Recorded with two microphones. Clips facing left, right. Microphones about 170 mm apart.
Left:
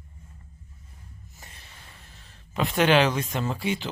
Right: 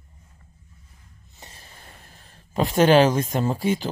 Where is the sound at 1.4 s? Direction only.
40° right (ahead or behind).